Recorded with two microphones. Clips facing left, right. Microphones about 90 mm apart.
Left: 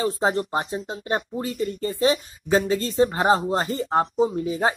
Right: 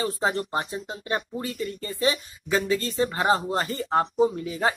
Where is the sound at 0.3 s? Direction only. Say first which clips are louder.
Left 3 dB; 20° left (ahead or behind).